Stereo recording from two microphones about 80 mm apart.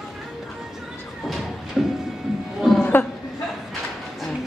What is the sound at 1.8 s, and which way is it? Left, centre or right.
Music, centre.